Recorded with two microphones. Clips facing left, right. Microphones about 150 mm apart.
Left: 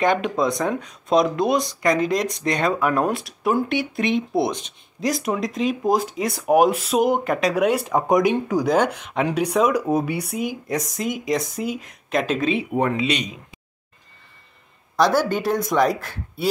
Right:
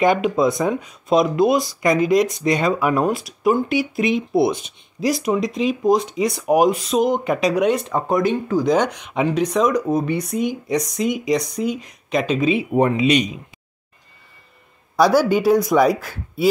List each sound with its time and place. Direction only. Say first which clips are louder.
0.0 s speech: right 3 dB; 5° right (ahead or behind)
12.7 s speech: right 5 dB; 15° right (ahead or behind)
15.0 s speech: right 4 dB; 10° right (ahead or behind)